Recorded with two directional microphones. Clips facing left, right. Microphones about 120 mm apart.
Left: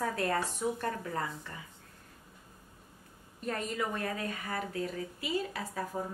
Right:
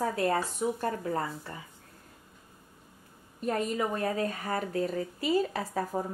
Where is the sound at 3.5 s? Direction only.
30° right (ahead or behind).